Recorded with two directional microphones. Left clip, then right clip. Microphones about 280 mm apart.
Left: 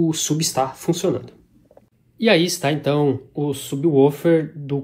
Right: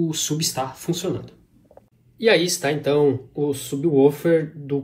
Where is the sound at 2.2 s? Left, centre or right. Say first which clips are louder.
Left 1 dB; left.